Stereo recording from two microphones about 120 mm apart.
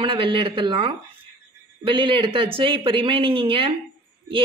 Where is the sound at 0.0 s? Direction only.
45° right (ahead or behind).